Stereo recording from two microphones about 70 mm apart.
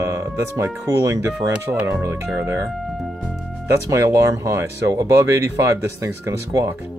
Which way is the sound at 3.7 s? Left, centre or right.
Right.